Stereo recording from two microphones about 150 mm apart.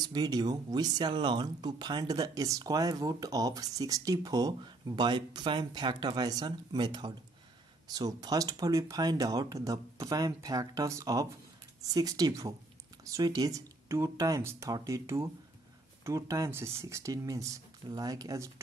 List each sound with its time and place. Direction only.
0.1 s speech: 25° right (ahead or behind)